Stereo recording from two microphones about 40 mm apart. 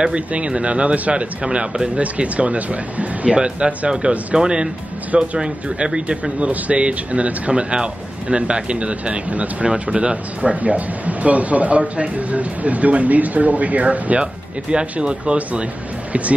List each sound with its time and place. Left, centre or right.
0.3 s speech: right
2.0 s speech: right
3.3 s speech: right
10.5 s speech: right
14.2 s speech: right